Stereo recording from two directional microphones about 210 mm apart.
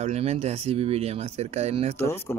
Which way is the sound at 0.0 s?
30° right (ahead or behind).